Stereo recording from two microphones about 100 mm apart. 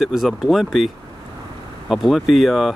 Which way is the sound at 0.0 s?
5° right (ahead or behind).